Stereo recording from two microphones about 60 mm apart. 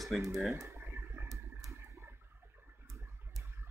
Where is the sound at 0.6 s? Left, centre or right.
Right.